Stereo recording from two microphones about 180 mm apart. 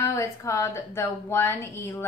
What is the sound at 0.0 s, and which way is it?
A woman's voice, 15° left (ahead or behind).